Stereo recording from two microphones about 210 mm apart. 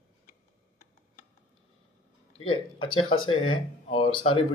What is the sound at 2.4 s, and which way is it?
Speech, 25° left (ahead or behind).